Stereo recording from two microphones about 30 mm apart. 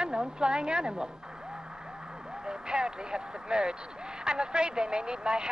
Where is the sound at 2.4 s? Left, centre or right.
Right.